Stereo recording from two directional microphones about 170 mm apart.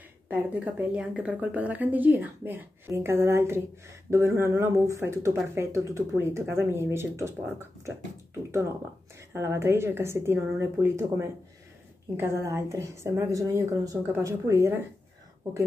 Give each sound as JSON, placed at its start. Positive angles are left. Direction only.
{"t": 0.3, "sound": "a woman's voice", "side_deg": -10}
{"t": 9.3, "sound": "a woman's voice", "side_deg": -15}